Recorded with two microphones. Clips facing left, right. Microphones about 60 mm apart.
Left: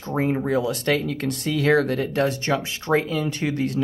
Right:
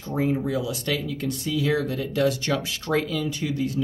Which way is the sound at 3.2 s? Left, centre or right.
Left.